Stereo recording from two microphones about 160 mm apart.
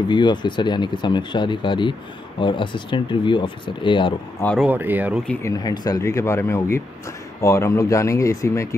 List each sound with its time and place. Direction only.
0.1 s speech: 30° left (ahead or behind)
4.6 s speech: 10° right (ahead or behind)
5.4 s speech: 25° left (ahead or behind)